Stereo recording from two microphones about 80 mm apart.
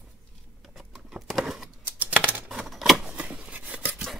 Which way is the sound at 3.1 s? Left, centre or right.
Centre.